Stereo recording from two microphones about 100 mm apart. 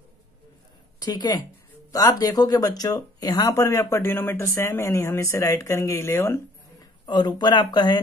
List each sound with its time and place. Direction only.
0.9 s speech: 45° left (ahead or behind); by 6.9 s 25° left (ahead or behind)
7.1 s speech: 45° left (ahead or behind)